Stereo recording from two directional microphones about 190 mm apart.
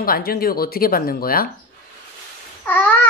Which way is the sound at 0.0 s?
50° left (ahead or behind).